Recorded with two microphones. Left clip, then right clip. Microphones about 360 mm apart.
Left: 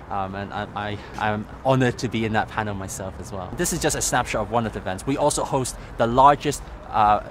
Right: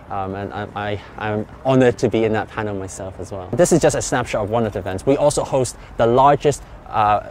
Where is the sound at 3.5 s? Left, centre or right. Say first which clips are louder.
Right 10 dB; right.